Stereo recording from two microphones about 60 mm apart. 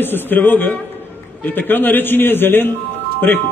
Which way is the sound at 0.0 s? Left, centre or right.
Left.